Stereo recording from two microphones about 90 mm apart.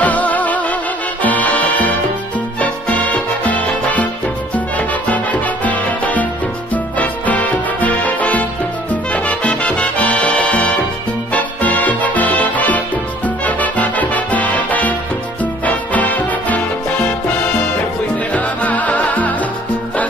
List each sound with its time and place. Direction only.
0.0 s music: 15° left (ahead or behind)